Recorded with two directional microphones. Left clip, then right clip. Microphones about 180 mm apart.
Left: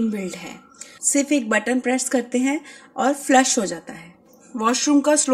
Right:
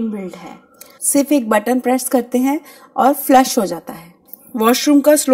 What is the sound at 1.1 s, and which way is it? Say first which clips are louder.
Speech: right 6 dB; 20° right (ahead or behind).